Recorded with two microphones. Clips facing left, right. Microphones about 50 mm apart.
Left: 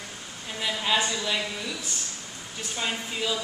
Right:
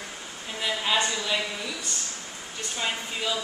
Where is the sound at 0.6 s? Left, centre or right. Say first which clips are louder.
Even; centre.